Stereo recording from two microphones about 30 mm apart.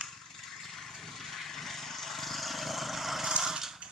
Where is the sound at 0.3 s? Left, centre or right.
Centre.